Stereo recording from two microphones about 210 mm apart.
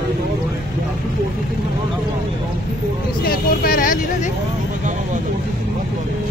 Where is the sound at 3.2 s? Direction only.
45° left (ahead or behind).